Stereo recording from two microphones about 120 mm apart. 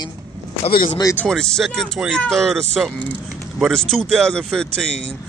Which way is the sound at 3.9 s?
5° left (ahead or behind).